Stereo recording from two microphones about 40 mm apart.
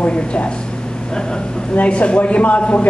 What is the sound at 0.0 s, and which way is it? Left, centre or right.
Speech, left.